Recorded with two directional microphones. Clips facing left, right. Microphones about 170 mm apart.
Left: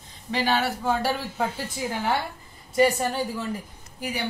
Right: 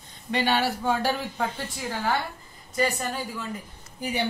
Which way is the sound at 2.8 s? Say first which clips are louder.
Left 6 dB; 30° left (ahead or behind).